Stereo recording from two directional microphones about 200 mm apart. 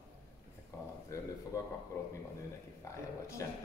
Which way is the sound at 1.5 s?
15° left (ahead or behind).